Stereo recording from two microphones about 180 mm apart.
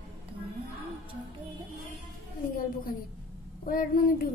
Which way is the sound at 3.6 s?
50° left (ahead or behind).